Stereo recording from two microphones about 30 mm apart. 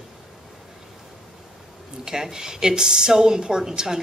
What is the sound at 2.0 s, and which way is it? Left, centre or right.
A woman's voice, centre.